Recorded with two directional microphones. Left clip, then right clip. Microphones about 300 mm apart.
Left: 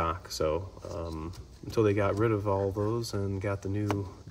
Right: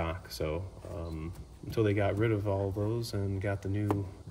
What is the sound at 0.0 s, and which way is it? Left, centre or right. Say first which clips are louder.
Speech: left 6 dB; centre.